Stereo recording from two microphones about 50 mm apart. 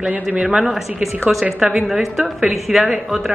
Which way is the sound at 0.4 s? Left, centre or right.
Centre.